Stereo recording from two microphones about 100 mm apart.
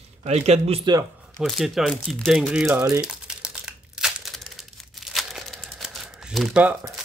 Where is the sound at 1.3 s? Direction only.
Centre (ahead or behind).